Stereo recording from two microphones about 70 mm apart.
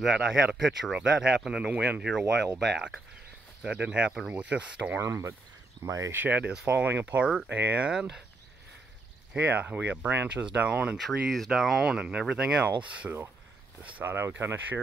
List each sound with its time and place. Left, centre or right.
0.0 s speech: centre
3.6 s speech: centre
5.0 s speech: right
5.8 s speech: right
6.1 s speech: right
9.3 s speech: right
11.0 s speech: centre
14.0 s speech: right